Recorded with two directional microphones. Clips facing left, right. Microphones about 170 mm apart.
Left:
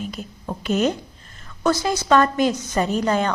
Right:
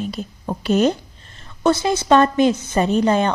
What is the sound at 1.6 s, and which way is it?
A woman's voice, 25° right (ahead or behind).